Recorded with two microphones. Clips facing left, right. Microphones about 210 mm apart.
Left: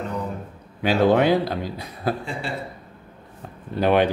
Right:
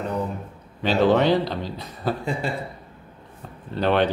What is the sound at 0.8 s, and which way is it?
A man's voice, 10° left (ahead or behind).